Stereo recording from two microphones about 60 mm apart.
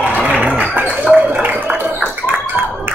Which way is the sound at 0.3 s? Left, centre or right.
Right.